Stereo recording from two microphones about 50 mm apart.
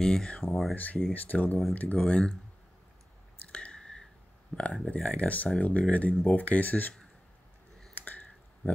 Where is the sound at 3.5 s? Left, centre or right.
Centre.